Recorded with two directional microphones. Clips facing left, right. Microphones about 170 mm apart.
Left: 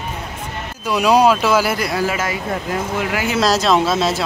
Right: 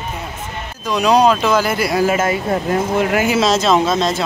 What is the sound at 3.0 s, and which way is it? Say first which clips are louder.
Speech: right 5 dB; 40° right (ahead or behind).